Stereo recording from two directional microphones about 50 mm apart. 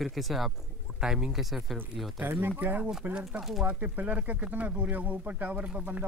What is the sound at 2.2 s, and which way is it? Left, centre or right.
Speech, right.